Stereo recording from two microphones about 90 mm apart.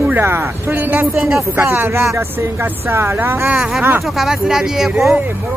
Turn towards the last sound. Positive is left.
turn(degrees=-5)  # may be behind; listen again after turning